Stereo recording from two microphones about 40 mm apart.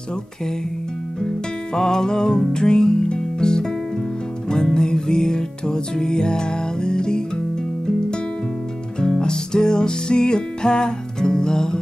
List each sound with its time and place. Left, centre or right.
1.2 s music: centre
9.2 s music: centre